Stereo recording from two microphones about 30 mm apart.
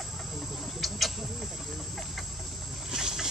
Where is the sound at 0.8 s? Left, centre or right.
Centre.